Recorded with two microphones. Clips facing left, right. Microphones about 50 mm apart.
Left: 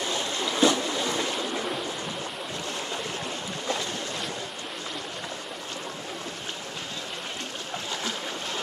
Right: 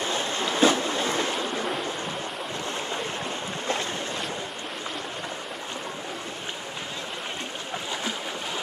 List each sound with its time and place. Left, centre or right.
0.0 s waves: right